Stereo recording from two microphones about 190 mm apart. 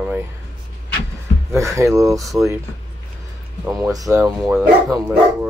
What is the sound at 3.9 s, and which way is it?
Speech, 15° right (ahead or behind).